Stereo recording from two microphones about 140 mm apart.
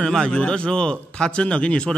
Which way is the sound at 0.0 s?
5° left (ahead or behind).